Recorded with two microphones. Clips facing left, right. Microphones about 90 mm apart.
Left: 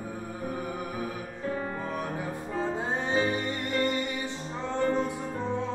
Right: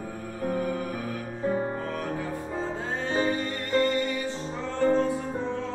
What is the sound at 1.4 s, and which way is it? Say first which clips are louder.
Music: right 5 dB; 30° right (ahead or behind).